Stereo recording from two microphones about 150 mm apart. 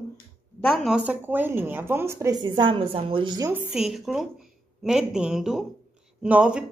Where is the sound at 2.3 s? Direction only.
30° right (ahead or behind).